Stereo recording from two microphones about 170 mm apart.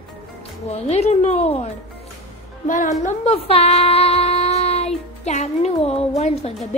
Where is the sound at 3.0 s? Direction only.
40° left (ahead or behind).